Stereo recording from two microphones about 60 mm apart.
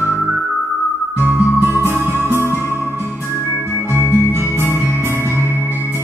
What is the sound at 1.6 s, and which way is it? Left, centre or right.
Music, right.